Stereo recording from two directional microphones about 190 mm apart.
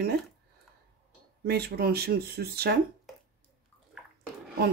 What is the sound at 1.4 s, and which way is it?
Speech, 55° right (ahead or behind).